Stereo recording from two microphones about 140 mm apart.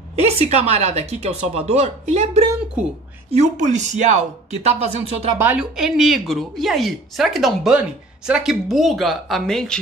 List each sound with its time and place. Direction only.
0.2 s a woman's voice: 50° right (ahead or behind)
4.6 s a woman's voice: 45° right (ahead or behind)
5.4 s speech: 10° right (ahead or behind)